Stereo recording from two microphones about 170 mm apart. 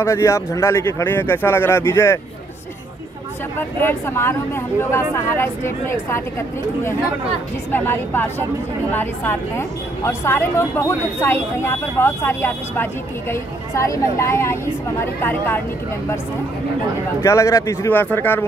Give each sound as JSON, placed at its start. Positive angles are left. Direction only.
{"t": 0.0, "sound": "a woman's voice", "side_deg": 15}
{"t": 3.5, "sound": "a woman's voice", "side_deg": 15}
{"t": 7.7, "sound": "a woman's voice", "side_deg": 10}
{"t": 17.2, "sound": "a woman's voice", "side_deg": 15}